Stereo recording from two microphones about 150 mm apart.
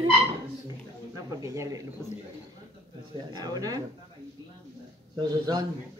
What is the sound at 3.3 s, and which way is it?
Speech, 25° right (ahead or behind).